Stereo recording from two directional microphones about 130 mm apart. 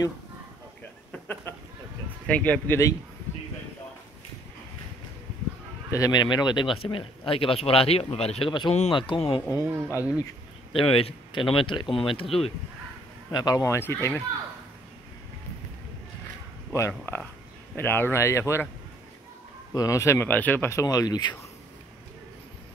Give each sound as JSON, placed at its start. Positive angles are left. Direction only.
{"t": 1.2, "sound": "a sound", "side_deg": 15}
{"t": 2.2, "sound": "speech", "side_deg": 10}
{"t": 5.9, "sound": "speech", "side_deg": 25}
{"t": 6.2, "sound": "speech", "side_deg": 35}
{"t": 9.6, "sound": "speech", "side_deg": -20}
{"t": 9.8, "sound": "speech", "side_deg": 25}
{"t": 10.7, "sound": "speech", "side_deg": 45}
{"t": 13.3, "sound": "speech", "side_deg": 30}
{"t": 16.7, "sound": "speech", "side_deg": 20}
{"t": 19.7, "sound": "speech", "side_deg": 25}